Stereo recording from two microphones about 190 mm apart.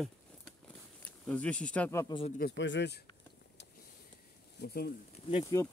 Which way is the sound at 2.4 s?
65° left (ahead or behind).